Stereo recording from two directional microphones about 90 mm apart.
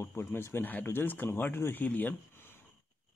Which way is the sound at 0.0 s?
25° left (ahead or behind).